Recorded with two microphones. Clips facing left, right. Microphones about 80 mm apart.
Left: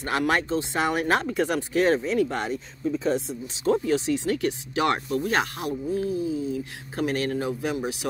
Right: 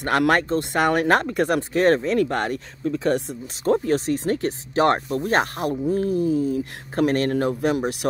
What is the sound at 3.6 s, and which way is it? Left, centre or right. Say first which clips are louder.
Speech: right 2 dB; right.